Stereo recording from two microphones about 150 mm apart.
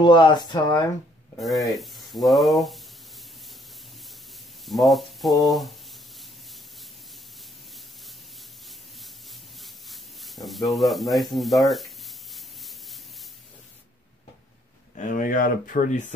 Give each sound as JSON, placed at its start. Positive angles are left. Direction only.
{"t": 0.0, "sound": "speech", "side_deg": 30}
{"t": 1.4, "sound": "speech", "side_deg": 0}
{"t": 4.6, "sound": "rub", "side_deg": 0}
{"t": 8.6, "sound": "a sound", "side_deg": 0}
{"t": 15.0, "sound": "speech", "side_deg": 65}